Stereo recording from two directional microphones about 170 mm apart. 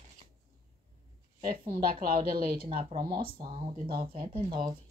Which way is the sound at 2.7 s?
35° right (ahead or behind).